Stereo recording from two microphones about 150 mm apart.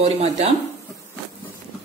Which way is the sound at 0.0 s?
45° right (ahead or behind).